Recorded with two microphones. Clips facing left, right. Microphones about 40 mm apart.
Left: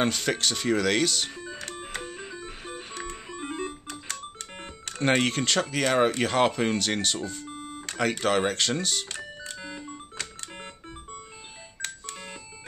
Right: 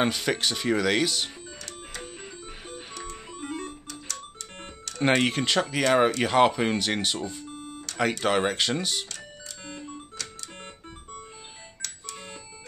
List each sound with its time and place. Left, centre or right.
0.0 s speech: centre
1.6 s music: left
2.0 s music: centre
2.9 s music: left
5.0 s speech: centre
7.5 s a sound: left
8.2 s speech: centre
9.6 s music: centre